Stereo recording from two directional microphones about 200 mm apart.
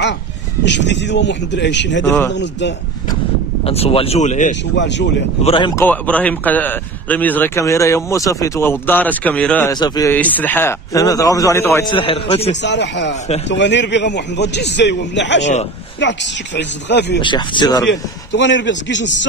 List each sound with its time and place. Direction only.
0.7 s a man's voice: 60° left (ahead or behind)
2.0 s a man's voice: 10° left (ahead or behind)
2.3 s a man's voice: 60° left (ahead or behind)
3.6 s speech: 30° left (ahead or behind)
4.7 s a man's voice: 60° left (ahead or behind)
5.4 s speech: 25° left (ahead or behind)
5.8 s a man's voice: 10° left (ahead or behind)
9.7 s a man's voice: 20° left (ahead or behind)
12.6 s a man's voice: 60° left (ahead or behind)
17.2 s speech: 25° left (ahead or behind)
17.8 s a man's voice: 60° left (ahead or behind)